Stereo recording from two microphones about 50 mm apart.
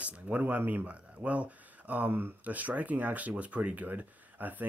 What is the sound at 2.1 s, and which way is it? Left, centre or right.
Speech, right.